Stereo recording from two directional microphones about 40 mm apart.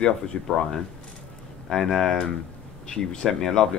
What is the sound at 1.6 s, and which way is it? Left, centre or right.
Speech, centre.